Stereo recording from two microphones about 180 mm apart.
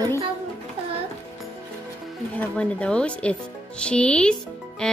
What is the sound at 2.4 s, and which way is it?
A woman's voice, 5° left (ahead or behind).